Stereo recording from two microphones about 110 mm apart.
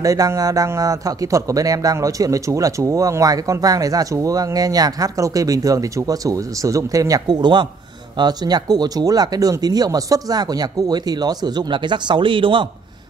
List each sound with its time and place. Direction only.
0.0 s a man's voice: 30° right (ahead or behind); by 12.6 s 50° right (ahead or behind)